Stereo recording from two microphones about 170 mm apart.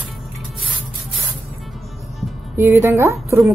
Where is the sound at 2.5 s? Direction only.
15° right (ahead or behind).